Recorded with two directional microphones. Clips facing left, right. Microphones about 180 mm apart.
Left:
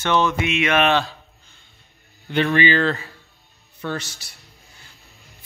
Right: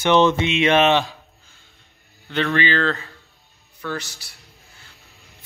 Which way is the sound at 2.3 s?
15° left (ahead or behind).